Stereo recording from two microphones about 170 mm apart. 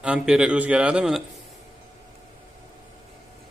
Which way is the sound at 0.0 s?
5° right (ahead or behind).